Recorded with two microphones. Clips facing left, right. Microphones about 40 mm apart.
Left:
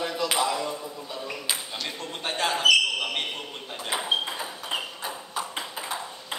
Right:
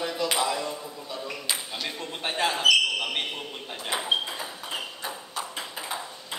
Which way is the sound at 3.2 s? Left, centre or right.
Centre.